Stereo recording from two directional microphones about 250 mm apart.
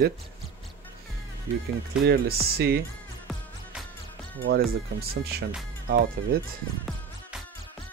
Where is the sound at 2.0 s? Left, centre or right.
Right.